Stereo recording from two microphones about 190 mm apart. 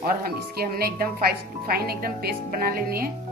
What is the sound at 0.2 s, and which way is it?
Speech, 55° right (ahead or behind).